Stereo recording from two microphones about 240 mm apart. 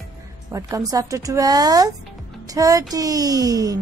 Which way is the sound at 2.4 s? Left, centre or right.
Centre.